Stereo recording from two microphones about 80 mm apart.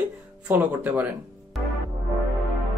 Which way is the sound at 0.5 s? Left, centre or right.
Right.